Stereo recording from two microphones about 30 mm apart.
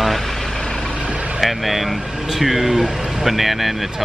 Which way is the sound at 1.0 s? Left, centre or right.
Right.